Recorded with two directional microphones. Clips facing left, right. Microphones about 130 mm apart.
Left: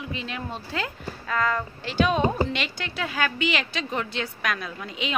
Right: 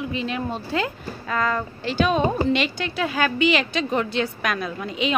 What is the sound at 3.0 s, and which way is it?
A woman's voice, 25° right (ahead or behind).